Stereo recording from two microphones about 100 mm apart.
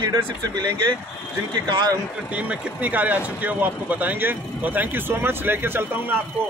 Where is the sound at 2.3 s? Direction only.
15° right (ahead or behind).